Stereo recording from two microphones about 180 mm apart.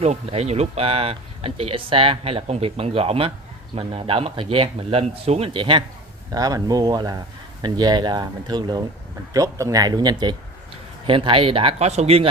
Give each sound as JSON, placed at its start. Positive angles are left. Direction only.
{"t": 0.0, "sound": "speech", "side_deg": -35}